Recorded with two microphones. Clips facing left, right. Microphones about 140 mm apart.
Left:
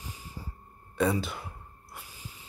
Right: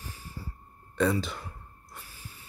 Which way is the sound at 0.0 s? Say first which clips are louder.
Even; 15° left (ahead or behind).